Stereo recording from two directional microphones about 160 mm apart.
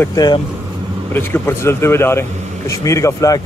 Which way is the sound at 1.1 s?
15° left (ahead or behind).